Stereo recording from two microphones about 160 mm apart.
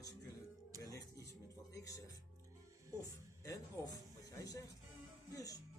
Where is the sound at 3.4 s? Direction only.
20° left (ahead or behind).